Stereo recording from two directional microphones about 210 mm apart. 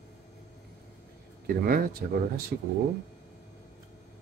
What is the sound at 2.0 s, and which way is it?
Speech, 50° right (ahead or behind).